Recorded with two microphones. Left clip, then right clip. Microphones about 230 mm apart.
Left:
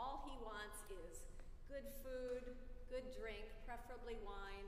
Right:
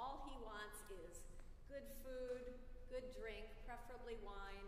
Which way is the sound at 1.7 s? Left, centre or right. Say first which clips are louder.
Left 2 dB; centre.